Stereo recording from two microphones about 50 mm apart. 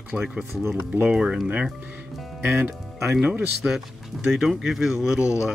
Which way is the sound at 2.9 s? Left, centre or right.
Centre.